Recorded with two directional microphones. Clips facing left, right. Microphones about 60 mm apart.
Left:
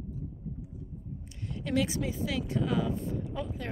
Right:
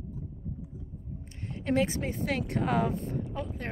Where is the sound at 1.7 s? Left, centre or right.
Right.